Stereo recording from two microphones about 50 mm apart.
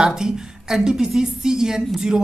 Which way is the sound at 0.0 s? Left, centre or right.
Centre.